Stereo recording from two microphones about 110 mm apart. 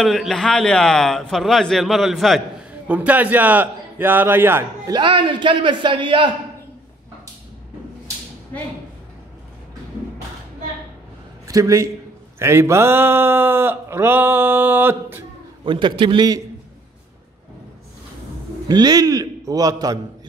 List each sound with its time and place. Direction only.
0.0 s a man's voice: centre (ahead or behind)
2.9 s a man's voice: 15° right (ahead or behind)
5.0 s a man's voice: 50° right (ahead or behind)
11.4 s a man's voice: 30° right (ahead or behind)
15.6 s a man's voice: 45° right (ahead or behind)
18.7 s a man's voice: 40° right (ahead or behind)